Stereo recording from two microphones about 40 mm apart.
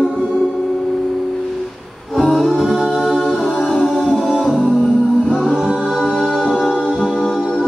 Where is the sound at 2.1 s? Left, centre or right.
Centre.